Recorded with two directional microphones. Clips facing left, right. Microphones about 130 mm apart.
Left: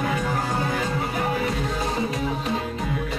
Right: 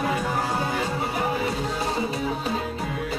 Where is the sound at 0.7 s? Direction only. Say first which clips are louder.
Left 1 dB; 30° right (ahead or behind).